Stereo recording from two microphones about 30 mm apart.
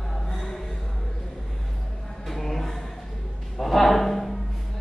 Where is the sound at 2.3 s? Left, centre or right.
Centre.